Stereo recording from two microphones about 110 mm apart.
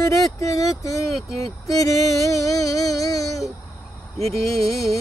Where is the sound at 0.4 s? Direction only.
30° left (ahead or behind).